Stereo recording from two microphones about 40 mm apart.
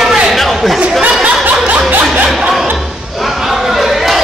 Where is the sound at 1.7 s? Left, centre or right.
Right.